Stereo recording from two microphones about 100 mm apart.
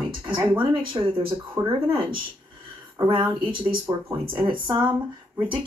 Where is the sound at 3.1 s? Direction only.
50° right (ahead or behind).